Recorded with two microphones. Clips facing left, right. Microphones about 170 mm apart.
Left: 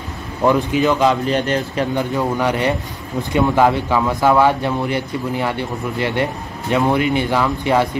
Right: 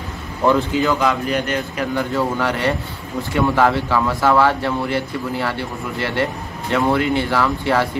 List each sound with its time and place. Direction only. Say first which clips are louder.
0.5 s a man's voice: left 1 dB; 15° left (ahead or behind)
2.1 s speech: left 2 dB; 15° left (ahead or behind)